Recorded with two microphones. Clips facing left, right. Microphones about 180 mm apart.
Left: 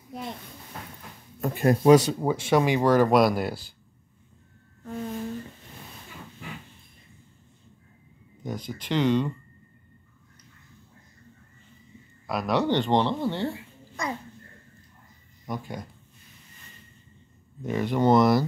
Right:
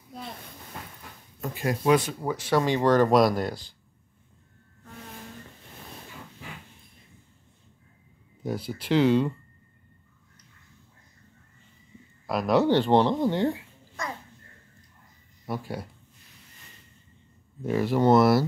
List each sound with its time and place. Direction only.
1.4 s speech: 50° left (ahead or behind)
2.1 s speech: 25° left (ahead or behind)
2.6 s speech: 10° left (ahead or behind)
8.5 s speech: 5° right (ahead or behind)
12.3 s speech: centre (ahead or behind)
15.4 s speech: 5° right (ahead or behind)
17.6 s speech: 5° right (ahead or behind)